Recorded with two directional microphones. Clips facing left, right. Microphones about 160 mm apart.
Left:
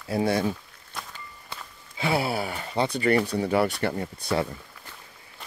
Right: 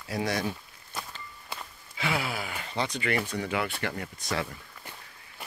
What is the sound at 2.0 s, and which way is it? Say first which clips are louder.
Speech: left 6 dB; 30° left (ahead or behind).